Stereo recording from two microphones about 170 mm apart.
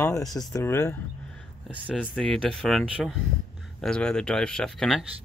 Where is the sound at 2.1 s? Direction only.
5° left (ahead or behind).